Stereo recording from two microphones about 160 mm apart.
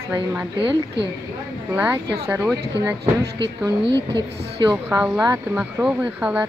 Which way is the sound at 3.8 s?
90° right.